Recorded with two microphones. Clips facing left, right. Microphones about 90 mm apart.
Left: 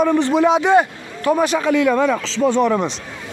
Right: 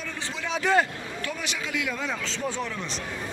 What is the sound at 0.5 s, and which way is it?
Speech, 30° left (ahead or behind).